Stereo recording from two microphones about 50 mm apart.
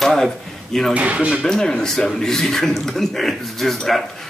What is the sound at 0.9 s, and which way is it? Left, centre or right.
Speech, right.